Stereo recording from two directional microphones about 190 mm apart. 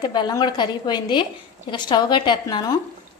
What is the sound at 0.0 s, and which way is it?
A woman's voice, 25° left (ahead or behind).